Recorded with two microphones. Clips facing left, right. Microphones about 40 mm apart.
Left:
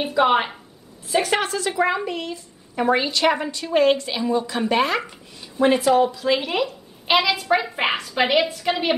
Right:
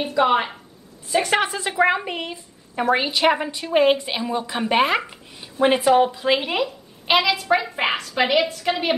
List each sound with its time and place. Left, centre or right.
0.0 s a woman's voice: centre
1.4 s a woman's voice: centre
6.5 s speech: centre